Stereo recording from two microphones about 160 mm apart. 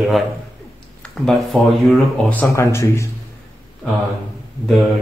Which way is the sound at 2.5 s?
20° left (ahead or behind).